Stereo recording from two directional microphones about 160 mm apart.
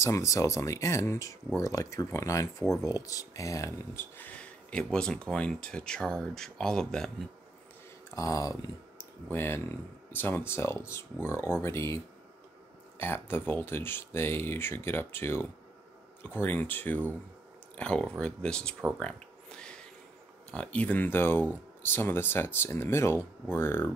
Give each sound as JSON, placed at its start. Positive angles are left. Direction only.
{"t": 0.0, "sound": "speech", "side_deg": 20}
{"t": 8.1, "sound": "speech", "side_deg": 20}
{"t": 13.0, "sound": "speech", "side_deg": 15}
{"t": 18.9, "sound": "a sound", "side_deg": 5}
{"t": 20.5, "sound": "speech", "side_deg": 10}